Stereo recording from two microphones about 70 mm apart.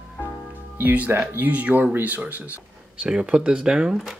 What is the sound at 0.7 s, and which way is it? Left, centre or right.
Speech, right.